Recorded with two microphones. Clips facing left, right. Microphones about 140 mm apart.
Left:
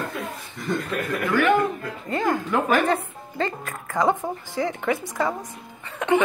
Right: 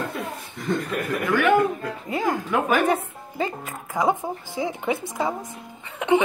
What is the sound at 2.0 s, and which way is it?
A woman's voice, 5° right (ahead or behind).